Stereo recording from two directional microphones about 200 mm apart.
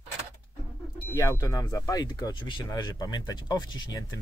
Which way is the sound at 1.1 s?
15° left (ahead or behind).